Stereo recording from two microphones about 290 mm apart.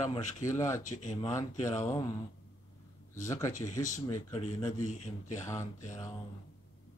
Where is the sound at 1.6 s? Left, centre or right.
Centre.